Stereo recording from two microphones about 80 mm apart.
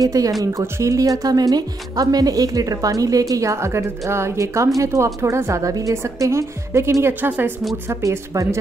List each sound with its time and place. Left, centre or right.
0.0 s a woman's voice: right
8.0 s speech: right